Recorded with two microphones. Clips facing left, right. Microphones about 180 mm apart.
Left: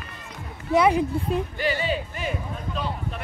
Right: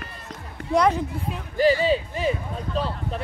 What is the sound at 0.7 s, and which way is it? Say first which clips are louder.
Speech: left 1 dB; 5° left (ahead or behind).